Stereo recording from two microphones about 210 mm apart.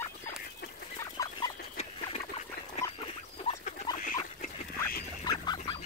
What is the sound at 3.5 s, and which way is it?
Rodents, 25° left (ahead or behind).